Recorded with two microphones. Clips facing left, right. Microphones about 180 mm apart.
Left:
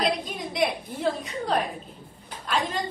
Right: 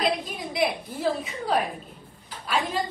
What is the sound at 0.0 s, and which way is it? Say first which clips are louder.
A woman's voice: even; centre (ahead or behind).